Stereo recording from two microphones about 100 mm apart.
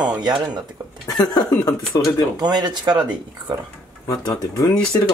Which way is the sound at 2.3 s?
45° right (ahead or behind).